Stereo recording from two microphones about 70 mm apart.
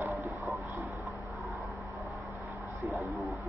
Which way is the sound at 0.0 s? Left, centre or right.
Right.